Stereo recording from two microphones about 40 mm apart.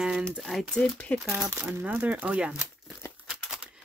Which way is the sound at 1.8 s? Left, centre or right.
Right.